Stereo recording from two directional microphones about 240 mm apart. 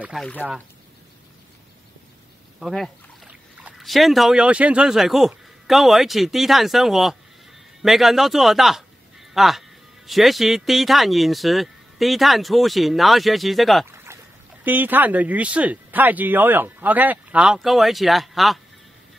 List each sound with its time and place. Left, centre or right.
0.0 s a man's voice: centre
2.6 s a man's voice: centre